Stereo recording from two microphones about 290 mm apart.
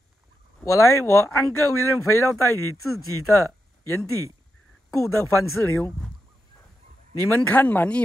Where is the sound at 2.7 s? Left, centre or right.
Left.